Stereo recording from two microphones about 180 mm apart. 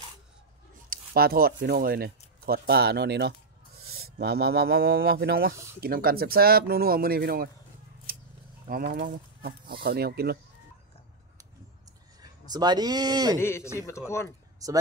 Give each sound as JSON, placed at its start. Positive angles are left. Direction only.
{"t": 0.8, "sound": "speech", "side_deg": -55}
{"t": 8.6, "sound": "speech", "side_deg": -55}
{"t": 12.2, "sound": "a man's voice", "side_deg": -20}
{"t": 13.4, "sound": "a man's voice", "side_deg": 15}
{"t": 14.6, "sound": "speech", "side_deg": -20}